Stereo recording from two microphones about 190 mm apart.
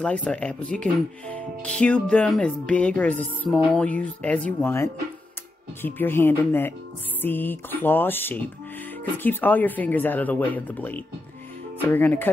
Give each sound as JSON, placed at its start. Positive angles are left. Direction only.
{"t": 0.0, "sound": "speech", "side_deg": 5}